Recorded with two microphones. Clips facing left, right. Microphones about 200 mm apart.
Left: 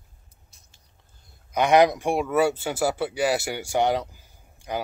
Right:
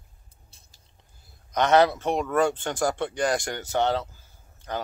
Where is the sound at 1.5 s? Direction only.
10° left (ahead or behind).